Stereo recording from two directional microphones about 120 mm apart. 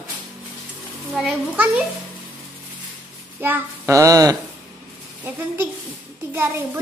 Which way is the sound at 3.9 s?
25° right (ahead or behind).